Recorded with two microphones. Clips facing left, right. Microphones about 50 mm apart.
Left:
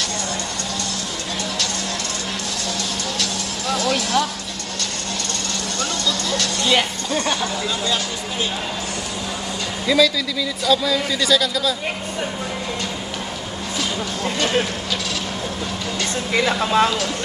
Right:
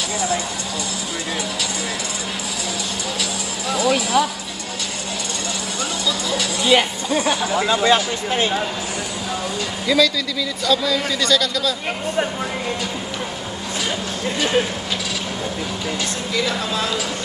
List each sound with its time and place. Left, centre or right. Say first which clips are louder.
3.2 s music: even; centre
5.8 s music: even; centre
7.9 s speech: right 6 dB; right
9.8 s speech: left 1 dB; centre
14.2 s speech: right 1 dB; centre